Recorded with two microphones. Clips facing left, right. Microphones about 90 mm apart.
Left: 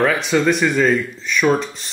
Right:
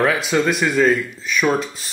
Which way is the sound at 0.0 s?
5° right (ahead or behind).